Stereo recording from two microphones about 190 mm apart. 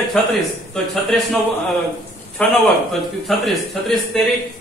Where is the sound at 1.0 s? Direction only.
Centre (ahead or behind).